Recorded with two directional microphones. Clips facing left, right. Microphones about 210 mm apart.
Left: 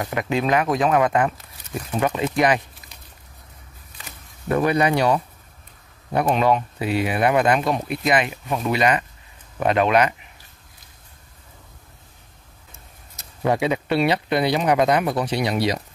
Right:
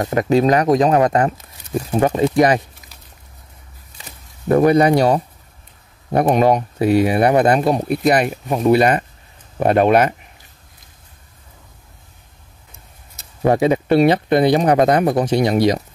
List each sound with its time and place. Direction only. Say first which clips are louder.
0.0 s speech: right 8 dB; 40° right (ahead or behind)
4.5 s speech: right 7 dB; 40° right (ahead or behind)
13.4 s speech: right 6 dB; 45° right (ahead or behind)